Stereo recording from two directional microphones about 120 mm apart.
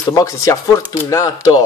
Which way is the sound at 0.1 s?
30° left (ahead or behind).